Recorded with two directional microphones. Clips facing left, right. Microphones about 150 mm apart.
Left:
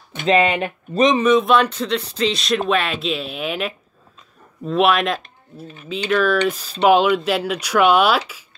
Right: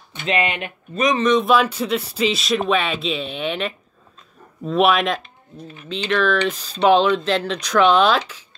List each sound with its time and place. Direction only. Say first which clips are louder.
0.3 s speech: left 6 dB; 35° left (ahead or behind)
1.1 s speech: right 1 dB; 5° left (ahead or behind)